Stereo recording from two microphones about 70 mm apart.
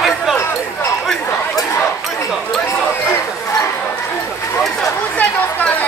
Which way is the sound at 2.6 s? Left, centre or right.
Left.